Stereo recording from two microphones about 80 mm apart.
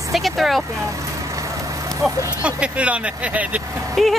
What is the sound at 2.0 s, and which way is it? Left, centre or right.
Speech, centre.